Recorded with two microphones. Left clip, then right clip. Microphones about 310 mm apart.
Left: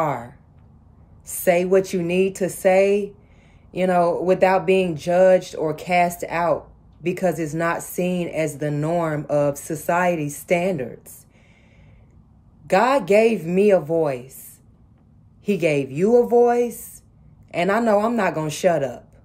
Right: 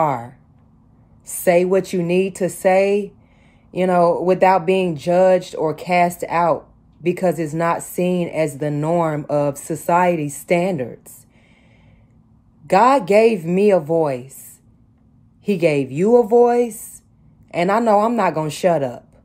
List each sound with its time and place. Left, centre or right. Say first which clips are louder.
0.0 s speech: right 4 dB; centre
12.6 s speech: right 4 dB; centre
15.4 s speech: right 3 dB; centre